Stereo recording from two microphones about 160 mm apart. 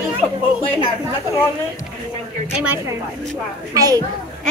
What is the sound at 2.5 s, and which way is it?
Speech, 10° right (ahead or behind).